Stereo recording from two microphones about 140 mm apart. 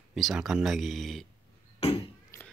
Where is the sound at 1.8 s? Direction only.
45° left (ahead or behind).